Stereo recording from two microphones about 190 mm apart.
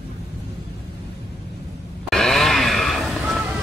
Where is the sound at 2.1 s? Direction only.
Centre (ahead or behind).